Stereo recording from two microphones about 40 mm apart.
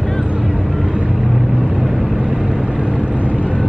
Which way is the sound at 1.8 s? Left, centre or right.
Centre.